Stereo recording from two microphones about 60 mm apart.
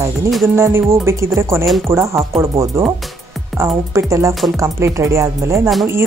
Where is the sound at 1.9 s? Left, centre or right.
Right.